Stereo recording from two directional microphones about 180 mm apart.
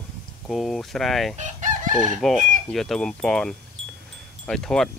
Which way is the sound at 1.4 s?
45° right (ahead or behind).